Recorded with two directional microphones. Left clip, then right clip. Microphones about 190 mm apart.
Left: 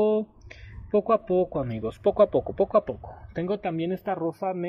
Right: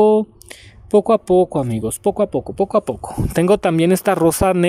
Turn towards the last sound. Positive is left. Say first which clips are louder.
# right 14 dB
turn(degrees=-60)  # may be behind; listen again after turning